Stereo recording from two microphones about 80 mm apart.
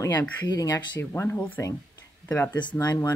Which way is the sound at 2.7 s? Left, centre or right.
Left.